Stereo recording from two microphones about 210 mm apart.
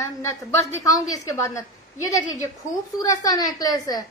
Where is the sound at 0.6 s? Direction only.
15° left (ahead or behind).